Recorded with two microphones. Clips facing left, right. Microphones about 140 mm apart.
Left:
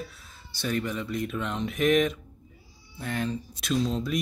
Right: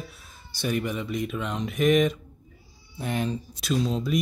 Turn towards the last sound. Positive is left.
turn(degrees=0)  # may be behind; listen again after turning